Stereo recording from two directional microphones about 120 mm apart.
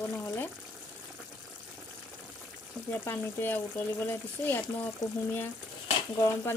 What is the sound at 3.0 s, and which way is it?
Speech, 20° left (ahead or behind).